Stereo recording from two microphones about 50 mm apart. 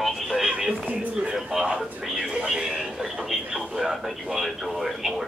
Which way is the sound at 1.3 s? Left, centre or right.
Centre.